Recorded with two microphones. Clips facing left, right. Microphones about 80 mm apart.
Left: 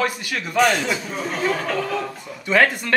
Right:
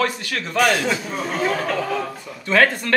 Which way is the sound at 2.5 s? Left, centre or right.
Centre.